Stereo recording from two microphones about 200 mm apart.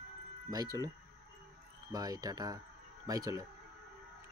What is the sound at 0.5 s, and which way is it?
Speech, 20° right (ahead or behind).